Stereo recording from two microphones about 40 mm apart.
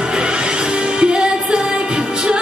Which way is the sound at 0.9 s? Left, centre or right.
Right.